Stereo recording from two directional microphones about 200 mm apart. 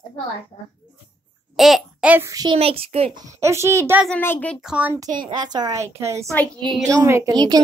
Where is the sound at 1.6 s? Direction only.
Centre (ahead or behind); by 3.2 s 30° right (ahead or behind).